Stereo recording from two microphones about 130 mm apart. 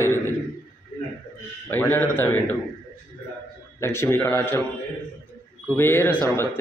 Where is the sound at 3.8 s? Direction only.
20° left (ahead or behind).